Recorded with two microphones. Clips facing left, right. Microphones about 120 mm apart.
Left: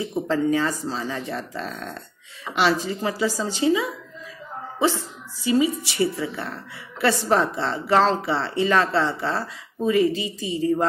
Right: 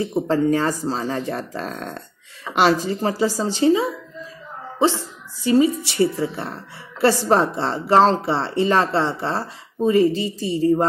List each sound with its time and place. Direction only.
0.3 s a woman's voice: 45° right (ahead or behind)
5.4 s a woman's voice: 40° right (ahead or behind)